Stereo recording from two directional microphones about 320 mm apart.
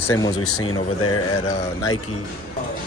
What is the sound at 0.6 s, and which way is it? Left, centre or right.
Speech, left.